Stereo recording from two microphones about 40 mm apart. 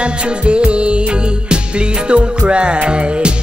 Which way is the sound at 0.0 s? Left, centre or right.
Right.